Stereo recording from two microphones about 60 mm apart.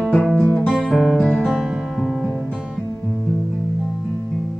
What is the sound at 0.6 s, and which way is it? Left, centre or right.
Music, centre.